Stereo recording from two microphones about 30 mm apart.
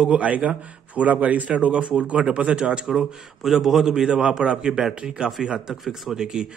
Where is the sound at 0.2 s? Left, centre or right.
Right.